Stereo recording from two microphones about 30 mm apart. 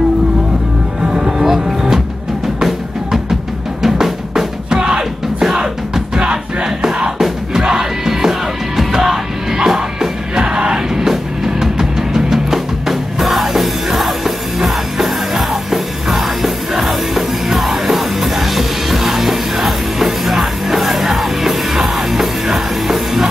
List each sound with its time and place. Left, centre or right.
1.0 s music: right
1.4 s music: centre
3.8 s drum: centre
4.8 s music: right
7.2 s music: centre
9.7 s music: right
11.0 s music: centre